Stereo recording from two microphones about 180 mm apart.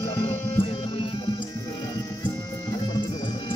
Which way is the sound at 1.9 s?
15° left (ahead or behind).